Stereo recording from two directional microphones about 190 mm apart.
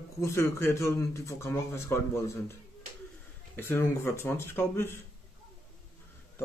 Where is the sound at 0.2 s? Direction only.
15° left (ahead or behind).